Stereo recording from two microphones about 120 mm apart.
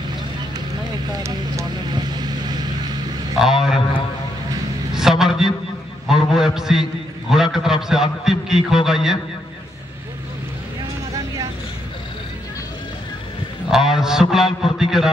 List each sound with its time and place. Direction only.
1.1 s speech: 25° right (ahead or behind)
1.9 s vehicle: 35° right (ahead or behind)
3.3 s a man's voice: 5° right (ahead or behind)
4.9 s a sound: 5° right (ahead or behind)
6.0 s a man's voice: 5° right (ahead or behind)
13.7 s a man's voice: 5° right (ahead or behind)